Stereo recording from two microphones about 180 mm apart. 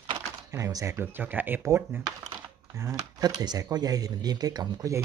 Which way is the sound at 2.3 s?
15° right (ahead or behind).